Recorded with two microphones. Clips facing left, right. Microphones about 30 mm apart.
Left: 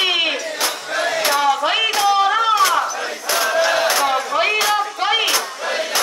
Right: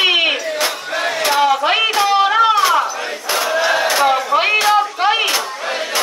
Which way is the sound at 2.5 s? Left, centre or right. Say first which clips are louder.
Right 2 dB; centre.